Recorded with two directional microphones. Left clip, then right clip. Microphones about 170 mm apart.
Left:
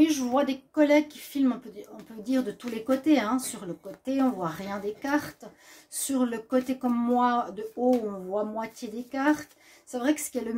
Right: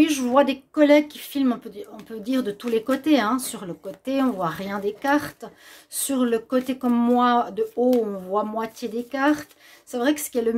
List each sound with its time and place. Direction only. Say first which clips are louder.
0.0 s speech: right 5 dB; 40° right (ahead or behind)